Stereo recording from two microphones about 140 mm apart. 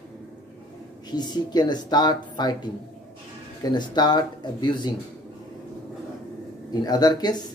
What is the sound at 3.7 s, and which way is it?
Speech, 30° left (ahead or behind).